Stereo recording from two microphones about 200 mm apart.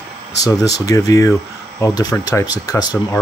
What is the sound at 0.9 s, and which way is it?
Speech, 15° left (ahead or behind).